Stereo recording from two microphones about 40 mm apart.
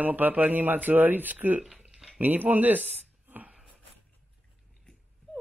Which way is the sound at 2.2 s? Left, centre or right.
Right.